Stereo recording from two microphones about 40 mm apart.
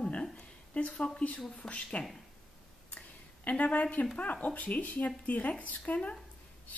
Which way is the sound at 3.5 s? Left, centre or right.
Left.